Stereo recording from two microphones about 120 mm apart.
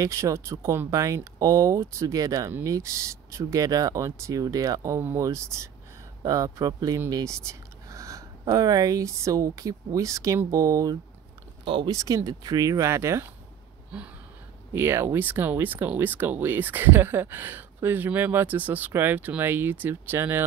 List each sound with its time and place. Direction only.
0.0 s speech: 25° right (ahead or behind)
11.6 s speech: 45° right (ahead or behind)
11.9 s speech: 30° right (ahead or behind)
14.7 s speech: 20° right (ahead or behind)